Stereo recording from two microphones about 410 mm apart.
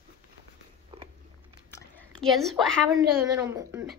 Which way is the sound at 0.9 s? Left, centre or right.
Centre.